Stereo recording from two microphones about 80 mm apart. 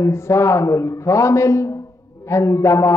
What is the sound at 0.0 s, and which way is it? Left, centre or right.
A man's voice, left.